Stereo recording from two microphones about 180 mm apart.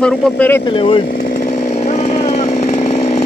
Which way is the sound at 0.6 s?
30° left (ahead or behind).